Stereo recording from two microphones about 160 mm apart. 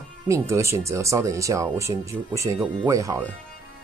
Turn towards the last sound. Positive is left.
turn(degrees=-20)  # may be behind; listen again after turning